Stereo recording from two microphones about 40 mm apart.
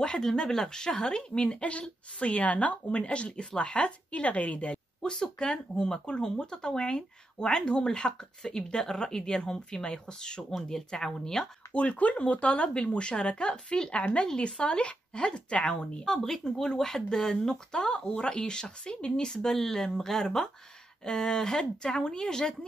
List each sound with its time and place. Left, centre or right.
0.0 s speech: centre; by 5.1 s left
5.1 s speech: centre
11.7 s speech: left
16.1 s speech: centre